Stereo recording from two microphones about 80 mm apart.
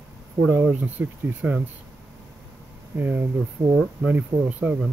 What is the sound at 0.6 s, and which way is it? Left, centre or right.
Speech, centre.